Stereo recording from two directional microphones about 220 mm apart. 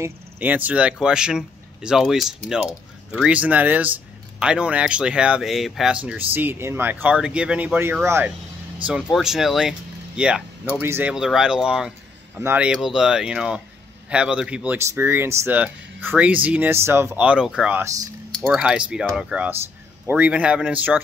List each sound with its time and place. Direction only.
0.0 s speech: 10° right (ahead or behind)